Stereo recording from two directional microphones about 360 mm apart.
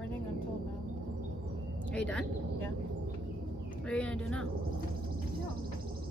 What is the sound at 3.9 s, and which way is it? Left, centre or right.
Speech, centre.